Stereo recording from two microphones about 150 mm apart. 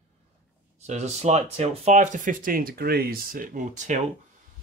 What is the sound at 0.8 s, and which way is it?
Speech, 50° right (ahead or behind).